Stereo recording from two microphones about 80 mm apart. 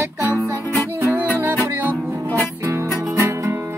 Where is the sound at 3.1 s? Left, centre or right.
Right.